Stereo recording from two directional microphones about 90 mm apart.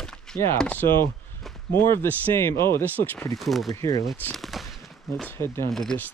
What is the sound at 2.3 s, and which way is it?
Speech, 30° left (ahead or behind).